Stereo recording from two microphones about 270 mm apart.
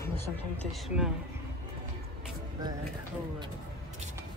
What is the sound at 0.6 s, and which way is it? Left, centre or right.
Speech, centre.